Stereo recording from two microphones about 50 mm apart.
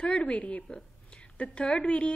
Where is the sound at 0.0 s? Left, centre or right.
Left.